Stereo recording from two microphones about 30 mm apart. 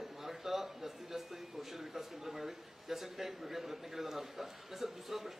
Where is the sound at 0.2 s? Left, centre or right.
Centre.